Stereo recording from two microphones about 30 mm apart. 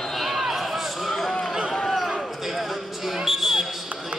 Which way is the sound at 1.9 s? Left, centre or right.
Centre.